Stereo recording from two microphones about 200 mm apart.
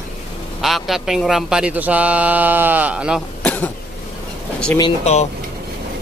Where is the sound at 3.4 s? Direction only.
5° left (ahead or behind).